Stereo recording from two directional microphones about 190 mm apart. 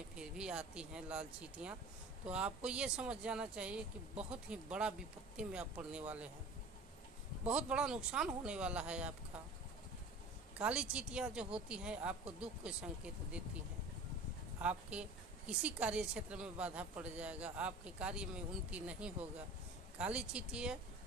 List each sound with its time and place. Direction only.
0.1 s a woman's voice: 5° right (ahead or behind)
7.4 s a woman's voice: 5° right (ahead or behind)
10.6 s a woman's voice: 5° right (ahead or behind)
14.6 s a woman's voice: 5° right (ahead or behind)